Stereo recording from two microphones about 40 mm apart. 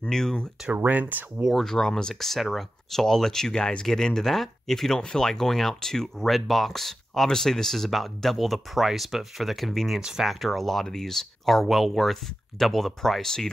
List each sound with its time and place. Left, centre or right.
0.1 s speech: centre
0.7 s speech: right
1.6 s speech: centre
2.1 s speech: centre
3.5 s speech: left
3.8 s speech: centre
9.9 s speech: centre
10.2 s speech: centre